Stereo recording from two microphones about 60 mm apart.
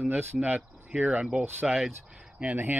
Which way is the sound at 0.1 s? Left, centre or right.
Right.